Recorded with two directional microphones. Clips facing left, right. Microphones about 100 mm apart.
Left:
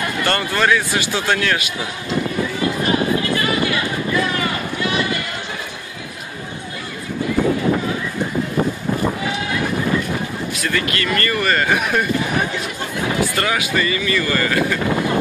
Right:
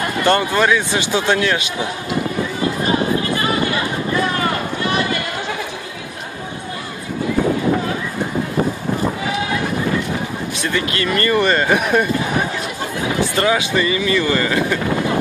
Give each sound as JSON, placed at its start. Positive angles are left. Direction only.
{"t": 0.2, "sound": "a man's voice", "side_deg": -20}
{"t": 10.6, "sound": "a man's voice", "side_deg": -25}
{"t": 13.4, "sound": "a man's voice", "side_deg": -20}